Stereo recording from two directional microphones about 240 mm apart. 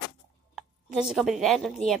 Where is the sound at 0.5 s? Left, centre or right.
Centre.